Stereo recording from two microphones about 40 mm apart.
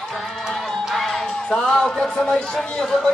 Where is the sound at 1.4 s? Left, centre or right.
Centre.